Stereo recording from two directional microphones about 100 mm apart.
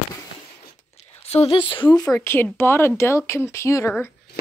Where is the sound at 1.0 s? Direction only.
90° left; by 1.9 s 60° left (ahead or behind).